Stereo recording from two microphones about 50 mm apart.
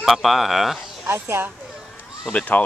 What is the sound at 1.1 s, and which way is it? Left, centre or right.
Speech, right.